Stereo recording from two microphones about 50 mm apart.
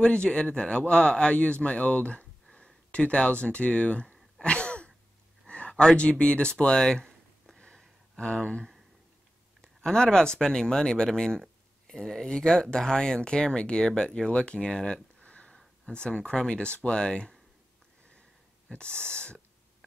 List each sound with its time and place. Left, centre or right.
0.0 s speech: centre
2.5 s a sound: left
5.9 s speech: left
8.2 s speech: centre
15.2 s a sound: left
15.9 s speech: centre
18.7 s speech: left